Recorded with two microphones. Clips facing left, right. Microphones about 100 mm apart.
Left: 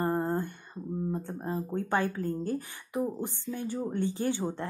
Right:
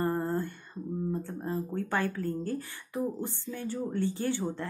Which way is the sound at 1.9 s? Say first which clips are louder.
Left 3 dB; 20° left (ahead or behind).